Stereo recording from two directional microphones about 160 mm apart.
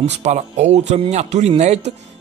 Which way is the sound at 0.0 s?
45° right (ahead or behind).